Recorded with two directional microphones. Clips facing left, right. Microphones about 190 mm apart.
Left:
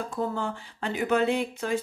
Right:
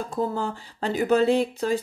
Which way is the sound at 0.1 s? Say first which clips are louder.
Right 5 dB; 35° right (ahead or behind).